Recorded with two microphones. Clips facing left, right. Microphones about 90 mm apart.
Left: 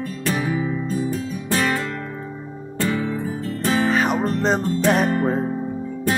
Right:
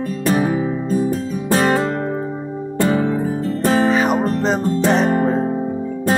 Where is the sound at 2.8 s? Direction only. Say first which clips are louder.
Right 5 dB; 40° right (ahead or behind).